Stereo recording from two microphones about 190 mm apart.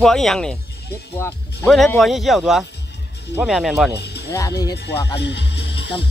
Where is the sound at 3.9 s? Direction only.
60° left (ahead or behind).